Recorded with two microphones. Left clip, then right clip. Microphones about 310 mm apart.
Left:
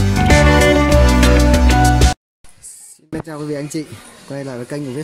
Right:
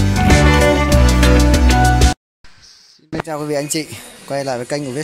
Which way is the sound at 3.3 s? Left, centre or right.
Centre.